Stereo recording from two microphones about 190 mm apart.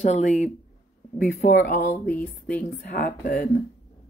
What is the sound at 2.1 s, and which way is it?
Speech, 10° left (ahead or behind).